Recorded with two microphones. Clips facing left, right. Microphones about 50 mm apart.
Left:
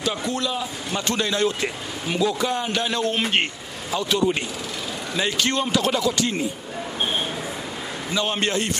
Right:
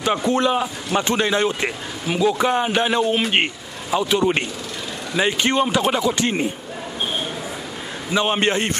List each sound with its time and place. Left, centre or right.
0.0 s speech: right
4.2 s speech: right
5.1 s speech: right
6.2 s speech: right
8.1 s speech: right